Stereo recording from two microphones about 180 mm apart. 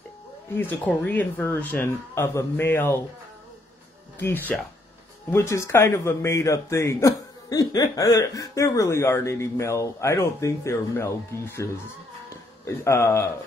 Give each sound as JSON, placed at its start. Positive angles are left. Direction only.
{"t": 0.6, "sound": "a man's voice", "side_deg": 10}
{"t": 4.2, "sound": "a man's voice", "side_deg": 10}